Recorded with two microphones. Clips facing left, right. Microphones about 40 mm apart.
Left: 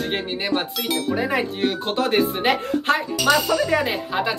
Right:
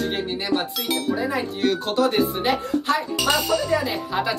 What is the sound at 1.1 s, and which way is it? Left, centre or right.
Speech, left.